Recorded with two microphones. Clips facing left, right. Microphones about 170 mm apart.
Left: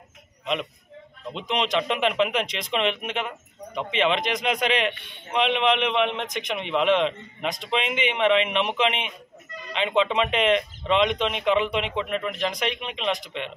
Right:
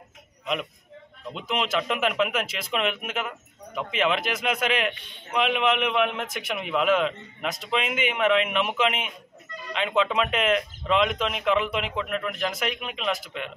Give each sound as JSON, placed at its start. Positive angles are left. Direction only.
{"t": 1.3, "sound": "a man's voice", "side_deg": -5}
{"t": 4.9, "sound": "a man's voice", "side_deg": 60}
{"t": 5.3, "sound": "a man's voice", "side_deg": -5}